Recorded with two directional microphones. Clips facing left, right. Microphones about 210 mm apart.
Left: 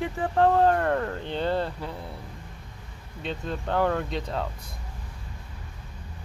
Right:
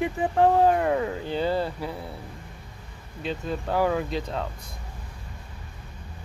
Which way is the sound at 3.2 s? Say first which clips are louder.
Right 2 dB; 5° right (ahead or behind).